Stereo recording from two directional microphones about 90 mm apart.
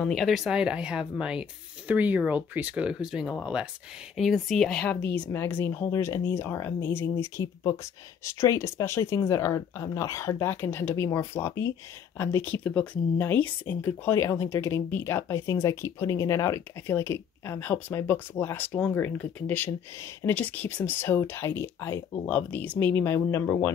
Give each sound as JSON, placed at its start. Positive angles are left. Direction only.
{"t": 0.0, "sound": "speech", "side_deg": 5}
{"t": 12.6, "sound": "speech", "side_deg": 15}
{"t": 22.2, "sound": "speech", "side_deg": 20}